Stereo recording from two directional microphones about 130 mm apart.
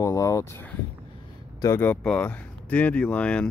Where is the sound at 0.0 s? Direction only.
25° left (ahead or behind).